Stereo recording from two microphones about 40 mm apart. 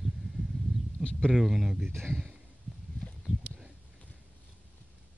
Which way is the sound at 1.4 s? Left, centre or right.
Centre.